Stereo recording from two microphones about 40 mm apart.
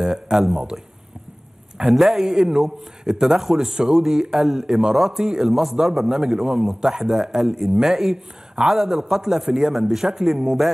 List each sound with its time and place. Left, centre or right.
0.0 s a man's voice: centre
1.8 s a man's voice: centre